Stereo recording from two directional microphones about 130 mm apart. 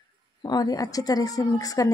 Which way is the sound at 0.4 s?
30° left (ahead or behind).